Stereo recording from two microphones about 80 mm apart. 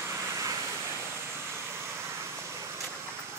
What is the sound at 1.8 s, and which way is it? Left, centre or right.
Vehicle, right.